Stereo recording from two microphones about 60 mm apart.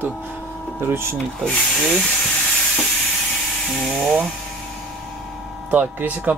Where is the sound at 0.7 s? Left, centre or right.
Right.